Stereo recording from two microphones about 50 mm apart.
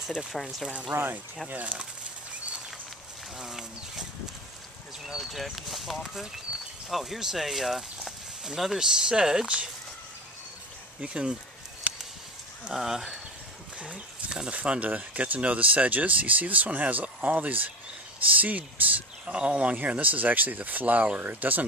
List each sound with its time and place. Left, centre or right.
0.0 s speech: centre
0.3 s speech: centre
0.9 s speech: right
1.5 s speech: right
3.3 s speech: centre
5.0 s speech: centre
11.0 s speech: centre
11.9 s a sound: right
12.7 s speech: centre
13.7 s speech: right
19.2 s speech: right